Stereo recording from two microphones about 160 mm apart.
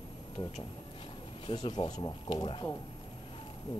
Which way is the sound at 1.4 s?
30° left (ahead or behind).